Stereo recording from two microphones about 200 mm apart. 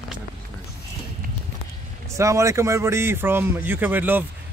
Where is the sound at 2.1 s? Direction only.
15° right (ahead or behind).